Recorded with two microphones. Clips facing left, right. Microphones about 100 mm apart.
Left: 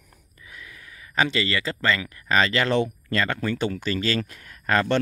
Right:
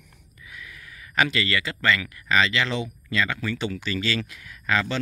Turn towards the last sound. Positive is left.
turn(degrees=45)  # may be behind; listen again after turning